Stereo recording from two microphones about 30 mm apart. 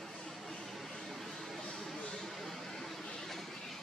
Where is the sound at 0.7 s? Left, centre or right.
Centre.